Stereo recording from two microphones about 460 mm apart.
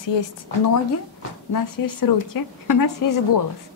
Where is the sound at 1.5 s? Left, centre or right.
Left.